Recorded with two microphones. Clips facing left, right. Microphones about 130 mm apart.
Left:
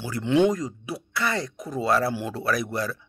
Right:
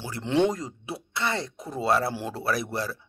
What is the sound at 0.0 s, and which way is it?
Speech, 30° right (ahead or behind).